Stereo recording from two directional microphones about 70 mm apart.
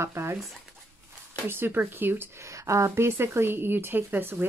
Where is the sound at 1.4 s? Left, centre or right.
Right.